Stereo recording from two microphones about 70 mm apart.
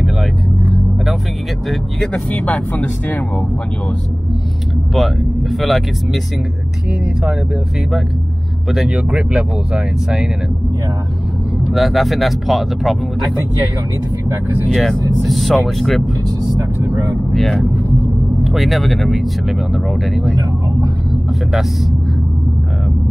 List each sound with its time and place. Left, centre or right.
2.3 s speech: left
4.9 s speech: centre
8.6 s speech: centre
11.7 s speech: centre
14.7 s speech: centre
17.3 s speech: centre